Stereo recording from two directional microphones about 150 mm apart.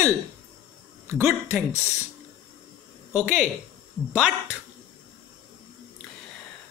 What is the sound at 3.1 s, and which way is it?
Speech, 10° right (ahead or behind).